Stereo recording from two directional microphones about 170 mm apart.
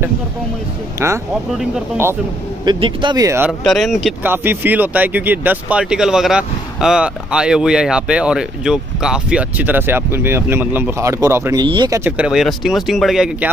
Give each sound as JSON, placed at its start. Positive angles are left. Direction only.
{"t": 0.9, "sound": "speech", "side_deg": -15}
{"t": 2.6, "sound": "speech", "side_deg": -25}
{"t": 3.6, "sound": "speech", "side_deg": 0}
{"t": 4.2, "sound": "speech", "side_deg": -10}
{"t": 11.6, "sound": "speech", "side_deg": -25}
{"t": 12.0, "sound": "speech", "side_deg": -5}